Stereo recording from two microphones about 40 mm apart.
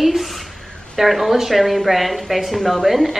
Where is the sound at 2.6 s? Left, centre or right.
Centre.